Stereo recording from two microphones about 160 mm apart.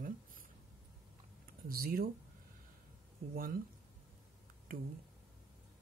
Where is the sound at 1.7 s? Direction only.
65° right (ahead or behind).